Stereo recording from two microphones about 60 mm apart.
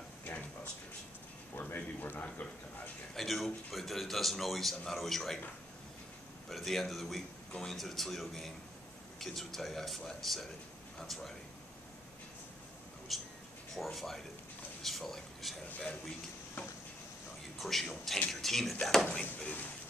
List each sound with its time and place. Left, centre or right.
0.2 s a sound: left
1.5 s speech: left
3.2 s a man's voice: centre
6.5 s a man's voice: centre
13.1 s a man's voice: centre
17.6 s a man's voice: centre